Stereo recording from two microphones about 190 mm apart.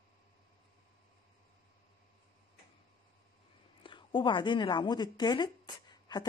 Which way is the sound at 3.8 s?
25° left (ahead or behind).